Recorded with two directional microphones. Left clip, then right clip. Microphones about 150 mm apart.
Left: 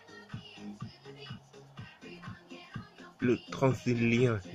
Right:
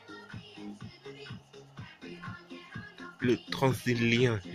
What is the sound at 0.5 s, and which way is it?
Music, 60° right (ahead or behind).